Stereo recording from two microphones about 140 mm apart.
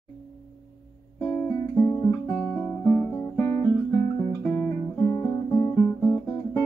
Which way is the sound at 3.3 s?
20° left (ahead or behind).